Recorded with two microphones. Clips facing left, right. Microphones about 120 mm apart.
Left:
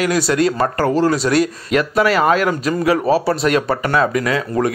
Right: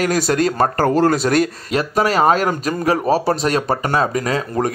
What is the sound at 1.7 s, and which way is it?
Speech, 40° right (ahead or behind).